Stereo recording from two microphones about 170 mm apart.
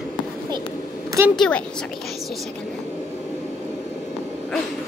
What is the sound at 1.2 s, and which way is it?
Speech, 15° right (ahead or behind).